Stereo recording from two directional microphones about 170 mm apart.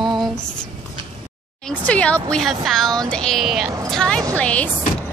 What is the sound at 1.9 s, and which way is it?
A woman's voice, 5° left (ahead or behind).